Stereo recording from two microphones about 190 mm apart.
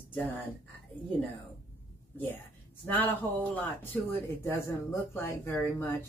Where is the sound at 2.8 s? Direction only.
10° left (ahead or behind).